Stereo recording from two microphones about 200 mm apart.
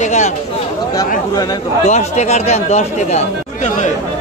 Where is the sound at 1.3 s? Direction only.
20° left (ahead or behind).